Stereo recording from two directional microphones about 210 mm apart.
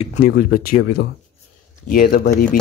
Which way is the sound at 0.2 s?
45° left (ahead or behind).